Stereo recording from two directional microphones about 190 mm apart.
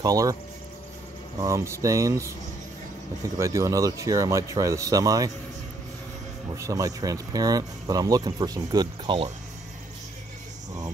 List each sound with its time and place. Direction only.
0.0 s speech: 20° right (ahead or behind)
1.4 s speech: 15° right (ahead or behind)
3.3 s speech: 15° right (ahead or behind)
6.5 s speech: 15° right (ahead or behind)